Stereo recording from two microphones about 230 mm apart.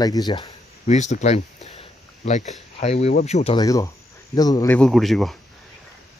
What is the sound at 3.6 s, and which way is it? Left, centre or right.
Speech, centre.